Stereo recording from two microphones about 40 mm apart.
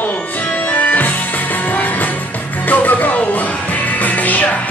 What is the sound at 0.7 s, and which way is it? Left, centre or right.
Music, left.